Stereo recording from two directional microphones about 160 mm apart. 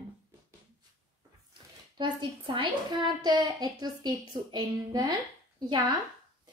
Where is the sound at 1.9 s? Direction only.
30° right (ahead or behind).